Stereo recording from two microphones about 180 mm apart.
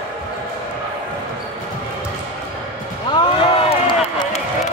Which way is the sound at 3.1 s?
35° left (ahead or behind).